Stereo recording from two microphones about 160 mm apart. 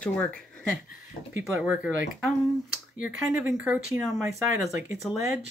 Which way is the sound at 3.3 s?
10° right (ahead or behind).